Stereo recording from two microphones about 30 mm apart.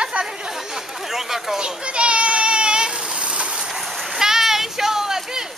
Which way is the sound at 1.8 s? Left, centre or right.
Right.